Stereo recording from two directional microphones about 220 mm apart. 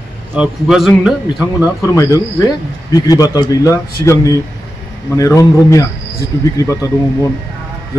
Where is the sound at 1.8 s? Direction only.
15° left (ahead or behind).